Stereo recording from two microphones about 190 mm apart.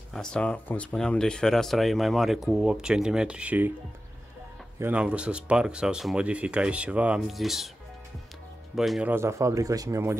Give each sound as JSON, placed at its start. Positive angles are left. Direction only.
{"t": 0.1, "sound": "speech", "side_deg": 5}
{"t": 4.7, "sound": "speech", "side_deg": -10}
{"t": 8.7, "sound": "speech", "side_deg": 0}
{"t": 9.1, "sound": "speech", "side_deg": -15}